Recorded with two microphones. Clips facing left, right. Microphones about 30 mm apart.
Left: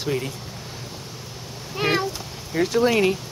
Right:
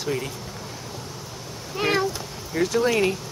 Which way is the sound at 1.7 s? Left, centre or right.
Centre.